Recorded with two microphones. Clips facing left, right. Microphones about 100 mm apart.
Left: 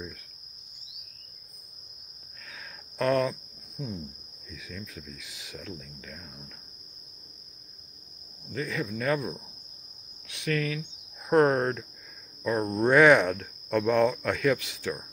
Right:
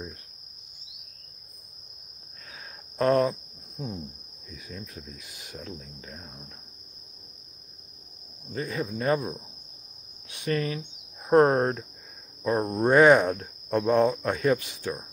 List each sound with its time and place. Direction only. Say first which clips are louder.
3.0 s cricket: right 3 dB; 30° right (ahead or behind)
5.0 s speech: even; 45° right (ahead or behind)
5.6 s speech: right 1 dB; 25° right (ahead or behind)
8.5 s speech: right 1 dB; 25° right (ahead or behind)
10.5 s speech: right 1 dB; 20° right (ahead or behind)
14.4 s speech: right 2 dB; 45° right (ahead or behind)